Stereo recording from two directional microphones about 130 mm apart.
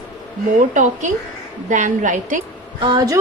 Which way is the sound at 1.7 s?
75° right (ahead or behind).